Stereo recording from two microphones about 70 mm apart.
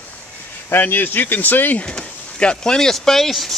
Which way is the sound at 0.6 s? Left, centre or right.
Left.